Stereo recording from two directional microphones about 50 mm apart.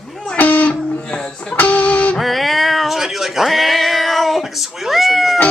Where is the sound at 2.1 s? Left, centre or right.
Centre.